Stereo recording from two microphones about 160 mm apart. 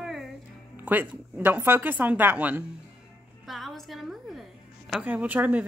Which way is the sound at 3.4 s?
Centre (ahead or behind).